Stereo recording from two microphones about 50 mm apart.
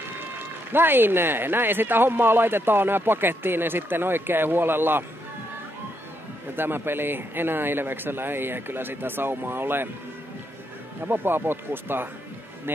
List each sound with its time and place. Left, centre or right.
0.7 s speech: right
6.5 s speech: right
11.1 s speech: right